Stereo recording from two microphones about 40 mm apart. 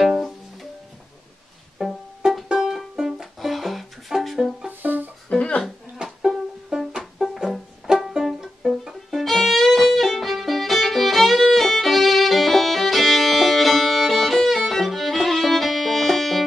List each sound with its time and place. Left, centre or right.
0.0 s music: centre
1.8 s music: centre
4.6 s music: right
6.0 s music: centre
8.6 s violin: centre